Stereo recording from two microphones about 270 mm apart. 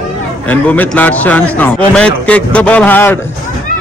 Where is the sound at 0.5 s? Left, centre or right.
Centre.